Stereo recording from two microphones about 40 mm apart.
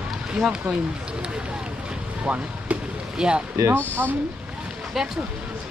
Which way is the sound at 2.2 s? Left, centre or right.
Right.